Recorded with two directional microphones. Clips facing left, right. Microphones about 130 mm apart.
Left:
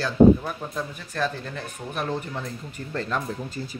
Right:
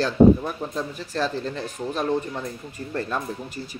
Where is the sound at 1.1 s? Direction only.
20° right (ahead or behind).